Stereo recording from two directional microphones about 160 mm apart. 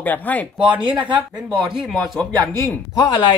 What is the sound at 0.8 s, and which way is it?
Speech, 30° right (ahead or behind).